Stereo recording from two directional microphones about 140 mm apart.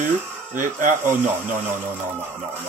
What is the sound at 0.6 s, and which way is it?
Speech, 65° right (ahead or behind).